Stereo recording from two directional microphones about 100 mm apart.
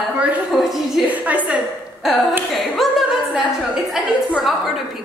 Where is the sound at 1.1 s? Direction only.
15° right (ahead or behind).